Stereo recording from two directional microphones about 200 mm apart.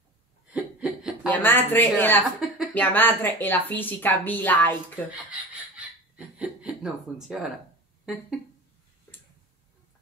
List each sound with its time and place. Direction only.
0.5 s a sound: 5° right (ahead or behind)
1.2 s a woman's voice: 10° left (ahead or behind)
5.8 s chuckle: 5° right (ahead or behind)
8.0 s speech: centre (ahead or behind)